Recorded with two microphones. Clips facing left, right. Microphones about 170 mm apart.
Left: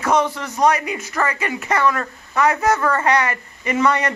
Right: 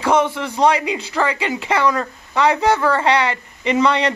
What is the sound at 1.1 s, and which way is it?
Speech, 15° right (ahead or behind).